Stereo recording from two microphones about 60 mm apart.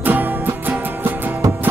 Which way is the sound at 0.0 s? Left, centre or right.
Right.